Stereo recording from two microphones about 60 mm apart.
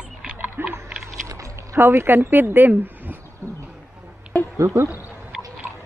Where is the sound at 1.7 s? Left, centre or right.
Right.